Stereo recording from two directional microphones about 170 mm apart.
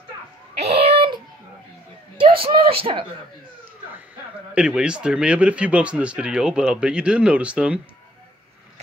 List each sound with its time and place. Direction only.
0.6 s a sound: 35° right (ahead or behind)
2.1 s speech: 30° right (ahead or behind)
4.6 s speech: 5° right (ahead or behind)